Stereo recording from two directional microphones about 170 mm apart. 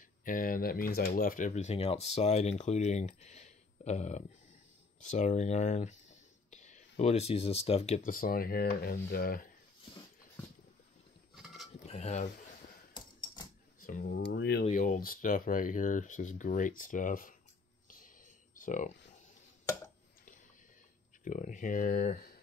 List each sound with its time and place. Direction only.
0.2 s speech: 55° left (ahead or behind)
11.3 s mechanisms: centre (ahead or behind)
11.9 s speech: 40° left (ahead or behind)
12.9 s typewriter: 25° left (ahead or behind)
13.7 s speech: 55° left (ahead or behind); by 14.7 s 75° left (ahead or behind)
14.7 s speech: 50° left (ahead or behind)
17.8 s a sound: 50° left (ahead or behind)
21.2 s speech: 50° left (ahead or behind)